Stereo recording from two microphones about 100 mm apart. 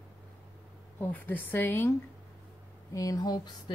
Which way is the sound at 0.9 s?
20° left (ahead or behind).